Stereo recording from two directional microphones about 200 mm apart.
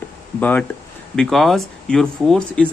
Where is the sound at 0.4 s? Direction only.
10° left (ahead or behind).